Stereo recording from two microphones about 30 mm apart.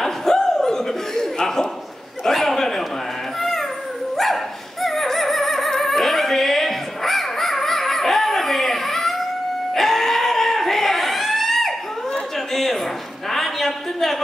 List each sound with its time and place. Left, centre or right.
0.0 s chuckle: centre
2.2 s a sound: centre
3.3 s cat: centre
4.8 s music: centre
9.8 s crowd: centre
13.3 s a sound: centre